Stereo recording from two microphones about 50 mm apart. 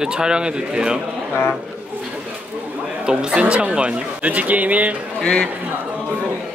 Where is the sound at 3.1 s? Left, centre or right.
Centre.